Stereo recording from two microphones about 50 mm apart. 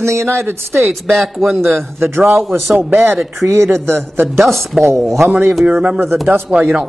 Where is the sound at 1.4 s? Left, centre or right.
Right.